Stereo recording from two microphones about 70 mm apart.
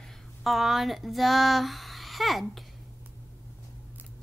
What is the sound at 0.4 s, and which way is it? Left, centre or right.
A child's voice, centre.